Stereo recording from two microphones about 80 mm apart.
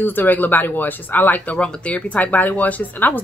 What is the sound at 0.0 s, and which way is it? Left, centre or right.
Speech, left.